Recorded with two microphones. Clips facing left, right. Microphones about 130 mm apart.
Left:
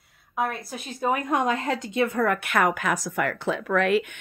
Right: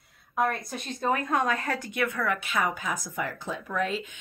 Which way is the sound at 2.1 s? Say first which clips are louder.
Left 5 dB; 50° left (ahead or behind).